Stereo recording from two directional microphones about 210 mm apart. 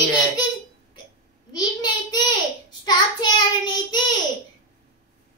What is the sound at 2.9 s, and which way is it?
Child singing, 20° left (ahead or behind).